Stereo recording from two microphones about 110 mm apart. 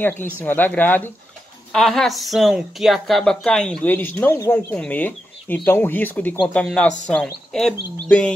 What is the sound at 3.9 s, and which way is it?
Speech, 20° left (ahead or behind).